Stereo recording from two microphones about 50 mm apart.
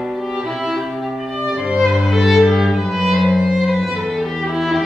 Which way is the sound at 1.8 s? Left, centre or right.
Centre.